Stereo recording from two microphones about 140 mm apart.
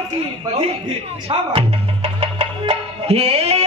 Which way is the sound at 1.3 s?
45° right (ahead or behind).